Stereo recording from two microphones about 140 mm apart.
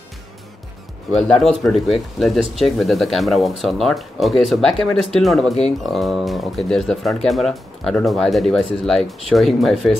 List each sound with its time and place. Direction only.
1.1 s speech: centre (ahead or behind)